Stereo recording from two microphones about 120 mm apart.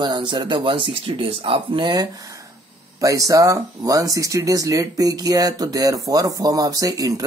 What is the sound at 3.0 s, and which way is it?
Speech, 25° right (ahead or behind).